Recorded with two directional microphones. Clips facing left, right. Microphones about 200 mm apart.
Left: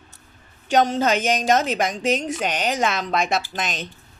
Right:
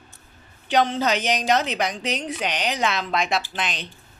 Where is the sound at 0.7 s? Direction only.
45° left (ahead or behind).